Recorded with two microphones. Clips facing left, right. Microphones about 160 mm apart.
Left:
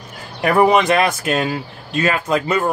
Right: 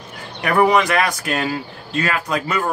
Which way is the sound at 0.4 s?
25° left (ahead or behind).